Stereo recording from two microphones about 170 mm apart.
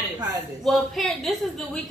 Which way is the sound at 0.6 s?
Centre (ahead or behind).